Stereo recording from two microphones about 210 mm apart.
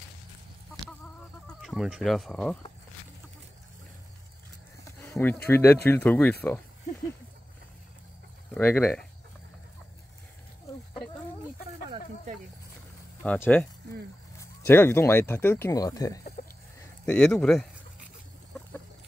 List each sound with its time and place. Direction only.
1.5 s speech: centre (ahead or behind)
5.0 s speech: 10° left (ahead or behind)
8.5 s speech: 10° left (ahead or behind)
13.2 s speech: 5° left (ahead or behind)
16.4 s chicken: 40° left (ahead or behind)
17.0 s speech: 5° left (ahead or behind)